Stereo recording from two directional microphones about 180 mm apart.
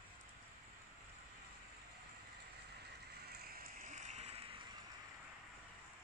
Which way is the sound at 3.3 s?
55° right (ahead or behind).